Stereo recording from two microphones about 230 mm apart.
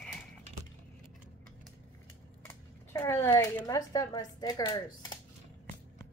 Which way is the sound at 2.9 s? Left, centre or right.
Centre.